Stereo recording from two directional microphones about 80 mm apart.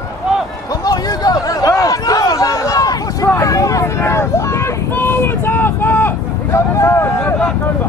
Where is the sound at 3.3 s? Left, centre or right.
Left.